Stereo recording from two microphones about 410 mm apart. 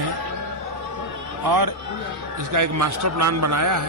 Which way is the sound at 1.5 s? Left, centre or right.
Right.